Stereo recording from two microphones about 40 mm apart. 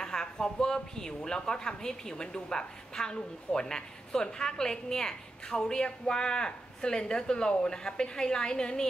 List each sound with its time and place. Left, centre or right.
0.0 s speech: centre